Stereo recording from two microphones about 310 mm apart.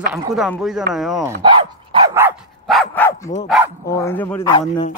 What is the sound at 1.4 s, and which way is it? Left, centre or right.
Dog, centre.